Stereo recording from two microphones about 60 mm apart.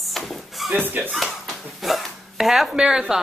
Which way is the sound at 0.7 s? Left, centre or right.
Right.